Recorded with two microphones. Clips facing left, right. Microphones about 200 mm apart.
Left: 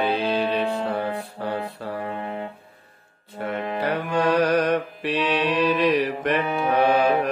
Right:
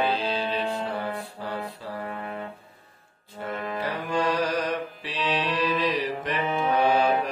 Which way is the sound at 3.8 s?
65° left (ahead or behind).